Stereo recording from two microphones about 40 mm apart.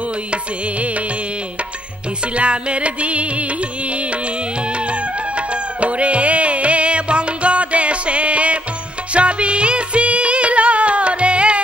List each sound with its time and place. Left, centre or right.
0.3 s music: right
2.3 s music: right
4.7 s music: right